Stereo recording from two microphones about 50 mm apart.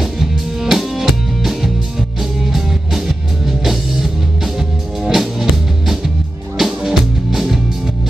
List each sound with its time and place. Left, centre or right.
0.0 s music: centre